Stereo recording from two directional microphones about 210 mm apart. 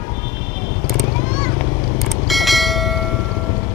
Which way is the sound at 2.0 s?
Centre (ahead or behind).